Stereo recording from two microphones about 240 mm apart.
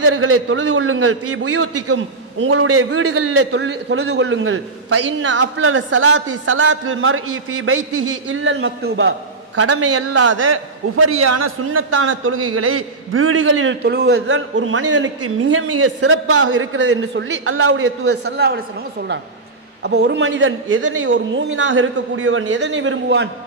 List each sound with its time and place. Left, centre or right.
0.0 s a man's voice: right
3.5 s a man's voice: right
9.6 s a man's voice: right
14.2 s a man's voice: right
19.8 s a man's voice: right